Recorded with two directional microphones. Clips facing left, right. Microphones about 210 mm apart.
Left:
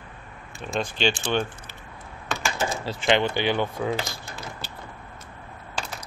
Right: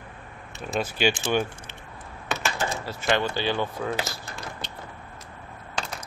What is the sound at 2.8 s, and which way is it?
Speech, 25° left (ahead or behind).